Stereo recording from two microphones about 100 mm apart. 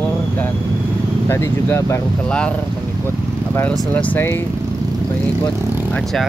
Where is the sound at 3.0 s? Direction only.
25° left (ahead or behind).